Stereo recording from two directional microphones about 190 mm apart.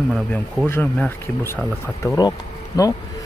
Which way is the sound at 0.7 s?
10° left (ahead or behind).